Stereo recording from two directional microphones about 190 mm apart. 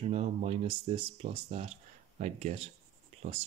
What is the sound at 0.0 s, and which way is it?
Speech, 30° right (ahead or behind).